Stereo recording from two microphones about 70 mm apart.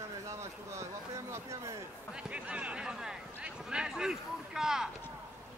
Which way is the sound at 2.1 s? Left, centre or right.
Centre.